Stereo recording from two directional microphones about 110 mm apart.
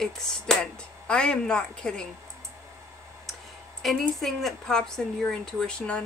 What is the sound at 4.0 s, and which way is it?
Speech, centre (ahead or behind).